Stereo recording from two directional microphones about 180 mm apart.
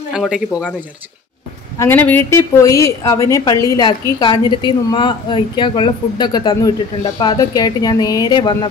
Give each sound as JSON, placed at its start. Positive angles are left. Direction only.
{"t": 0.1, "sound": "speech", "side_deg": -5}
{"t": 1.8, "sound": "a woman's voice", "side_deg": 10}